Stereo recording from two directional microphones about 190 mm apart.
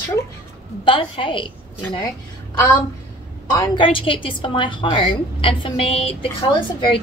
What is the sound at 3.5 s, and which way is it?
A woman's voice, 25° left (ahead or behind).